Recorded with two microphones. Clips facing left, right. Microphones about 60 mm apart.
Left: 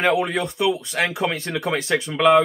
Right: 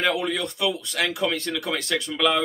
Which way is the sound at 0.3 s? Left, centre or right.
Left.